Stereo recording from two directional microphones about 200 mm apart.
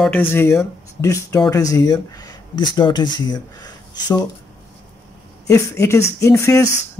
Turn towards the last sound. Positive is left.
turn(degrees=15)  # may be behind; listen again after turning